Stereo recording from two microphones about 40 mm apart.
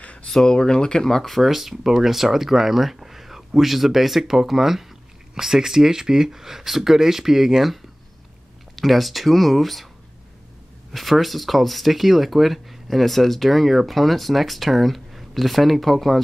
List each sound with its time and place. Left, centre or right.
0.0 s a sound: left
0.3 s speech: centre
1.4 s speech: centre
10.9 s speech: centre